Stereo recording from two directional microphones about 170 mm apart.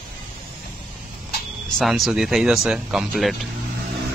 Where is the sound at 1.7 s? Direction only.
Centre (ahead or behind).